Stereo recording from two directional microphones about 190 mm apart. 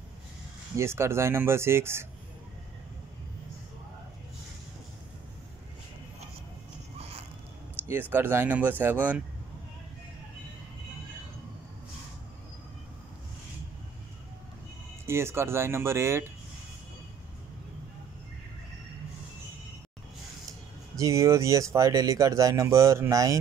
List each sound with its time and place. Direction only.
0.7 s speech: 15° right (ahead or behind)
7.0 s a sound: 30° right (ahead or behind)
7.9 s speech: 10° right (ahead or behind)
15.0 s speech: 15° right (ahead or behind)
21.0 s speech: 15° right (ahead or behind)